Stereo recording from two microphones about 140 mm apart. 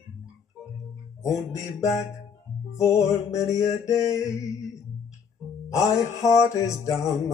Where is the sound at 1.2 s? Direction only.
20° left (ahead or behind).